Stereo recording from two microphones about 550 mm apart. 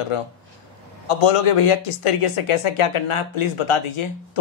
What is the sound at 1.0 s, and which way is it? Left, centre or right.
Speech, left.